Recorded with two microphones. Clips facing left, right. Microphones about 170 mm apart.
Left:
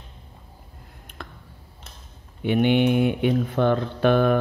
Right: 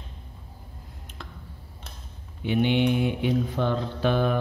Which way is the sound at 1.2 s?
55° left (ahead or behind).